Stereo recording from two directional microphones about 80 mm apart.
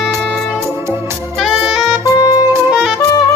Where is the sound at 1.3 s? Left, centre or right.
Centre.